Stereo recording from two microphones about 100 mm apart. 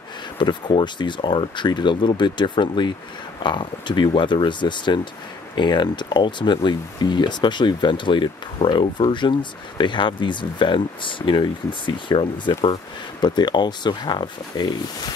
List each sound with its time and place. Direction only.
0.4 s speech: 55° left (ahead or behind)
13.2 s speech: 45° left (ahead or behind)